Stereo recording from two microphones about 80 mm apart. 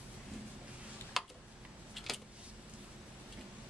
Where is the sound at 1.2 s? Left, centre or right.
Centre.